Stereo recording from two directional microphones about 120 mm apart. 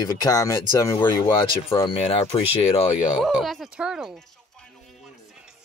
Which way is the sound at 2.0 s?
55° left (ahead or behind).